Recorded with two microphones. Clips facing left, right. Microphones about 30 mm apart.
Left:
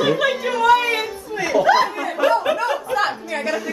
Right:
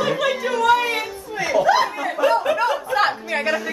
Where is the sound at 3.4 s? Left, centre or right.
Centre.